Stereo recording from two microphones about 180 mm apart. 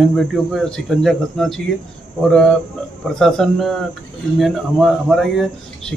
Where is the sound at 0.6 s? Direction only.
5° left (ahead or behind).